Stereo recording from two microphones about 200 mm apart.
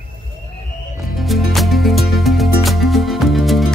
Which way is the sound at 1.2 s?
Centre (ahead or behind).